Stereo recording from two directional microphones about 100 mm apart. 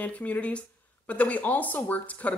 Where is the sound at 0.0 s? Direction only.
15° left (ahead or behind).